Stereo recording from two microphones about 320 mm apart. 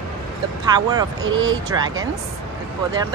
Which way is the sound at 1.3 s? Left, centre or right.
Right.